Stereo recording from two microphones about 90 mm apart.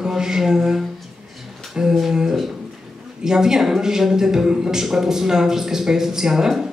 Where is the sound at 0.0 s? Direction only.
5° right (ahead or behind).